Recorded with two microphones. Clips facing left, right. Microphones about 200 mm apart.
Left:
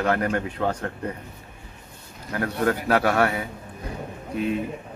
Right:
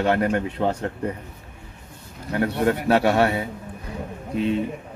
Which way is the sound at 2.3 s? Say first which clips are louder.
Right 3 dB; 25° right (ahead or behind).